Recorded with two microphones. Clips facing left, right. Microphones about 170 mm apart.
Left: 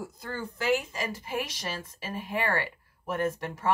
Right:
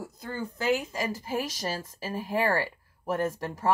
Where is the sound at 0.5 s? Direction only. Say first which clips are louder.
Even; 40° right (ahead or behind).